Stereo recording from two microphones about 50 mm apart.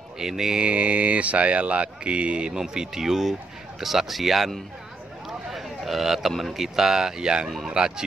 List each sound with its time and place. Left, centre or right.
0.2 s speech: centre
0.6 s speech: right; by 4.5 s centre
5.5 s a sound: centre
6.3 s speech: centre